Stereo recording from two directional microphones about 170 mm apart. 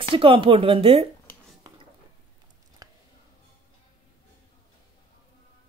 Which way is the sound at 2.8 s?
20° right (ahead or behind).